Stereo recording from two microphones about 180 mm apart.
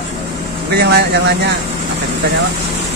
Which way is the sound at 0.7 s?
65° right (ahead or behind).